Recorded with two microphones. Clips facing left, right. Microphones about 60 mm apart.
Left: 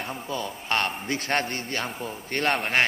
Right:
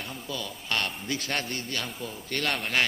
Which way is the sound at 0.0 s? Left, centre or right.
Left.